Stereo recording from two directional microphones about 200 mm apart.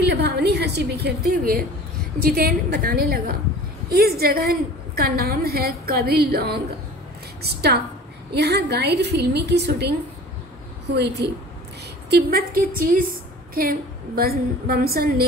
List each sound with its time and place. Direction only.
0.0 s a woman's voice: 55° right (ahead or behind)
11.2 s a woman's voice: 55° right (ahead or behind)